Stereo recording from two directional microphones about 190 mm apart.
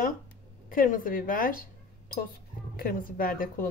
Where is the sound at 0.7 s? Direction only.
45° left (ahead or behind).